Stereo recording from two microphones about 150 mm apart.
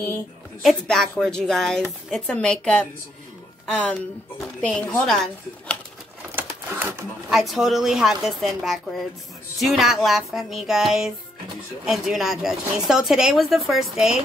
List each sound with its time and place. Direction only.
0.6 s speech: centre (ahead or behind)
6.3 s a sound: 15° right (ahead or behind)
7.2 s speech: centre (ahead or behind)